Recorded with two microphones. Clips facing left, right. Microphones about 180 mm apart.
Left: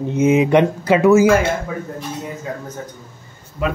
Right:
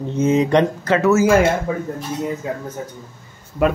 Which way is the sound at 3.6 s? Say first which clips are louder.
Right 4 dB; 70° right (ahead or behind).